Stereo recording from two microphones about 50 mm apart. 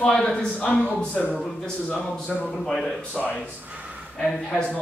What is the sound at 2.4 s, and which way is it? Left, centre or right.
Speech, centre.